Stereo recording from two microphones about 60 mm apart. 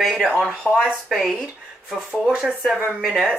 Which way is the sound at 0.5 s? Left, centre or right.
Right.